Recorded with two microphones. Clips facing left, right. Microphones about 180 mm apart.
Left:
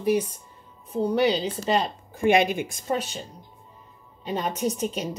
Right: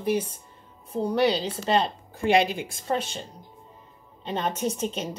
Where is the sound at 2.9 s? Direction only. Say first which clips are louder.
Right 1 dB; 10° left (ahead or behind).